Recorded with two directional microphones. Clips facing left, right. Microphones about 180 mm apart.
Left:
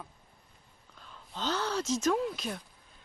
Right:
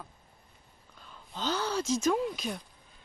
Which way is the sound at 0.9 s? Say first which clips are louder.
Even; 5° right (ahead or behind).